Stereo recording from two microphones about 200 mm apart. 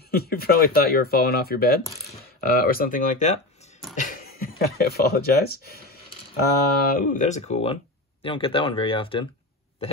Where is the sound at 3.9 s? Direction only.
40° left (ahead or behind).